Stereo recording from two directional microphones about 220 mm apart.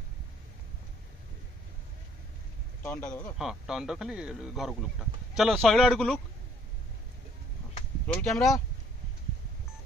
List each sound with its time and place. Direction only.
2.8 s speech: 5° left (ahead or behind)
3.3 s speech: centre (ahead or behind)
8.2 s speech: centre (ahead or behind)